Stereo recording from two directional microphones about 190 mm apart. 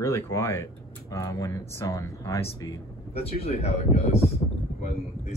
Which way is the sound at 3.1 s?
35° left (ahead or behind).